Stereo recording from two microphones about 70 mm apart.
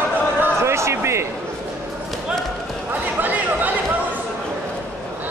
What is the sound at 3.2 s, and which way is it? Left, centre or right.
Chatter, right.